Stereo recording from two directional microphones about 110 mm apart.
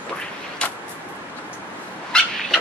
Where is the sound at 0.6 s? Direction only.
10° left (ahead or behind).